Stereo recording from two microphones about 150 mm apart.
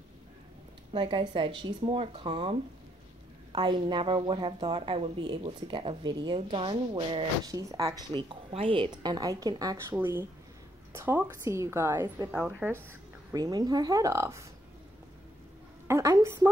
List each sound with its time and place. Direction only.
0.9 s a woman's voice: 35° right (ahead or behind)
9.9 s a woman's voice: 15° right (ahead or behind)
12.3 s speech: 5° right (ahead or behind)
13.3 s a woman's voice: 25° right (ahead or behind)
15.9 s a woman's voice: 20° right (ahead or behind)